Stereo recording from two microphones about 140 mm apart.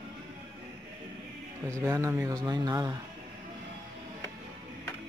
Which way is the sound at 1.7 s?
20° right (ahead or behind).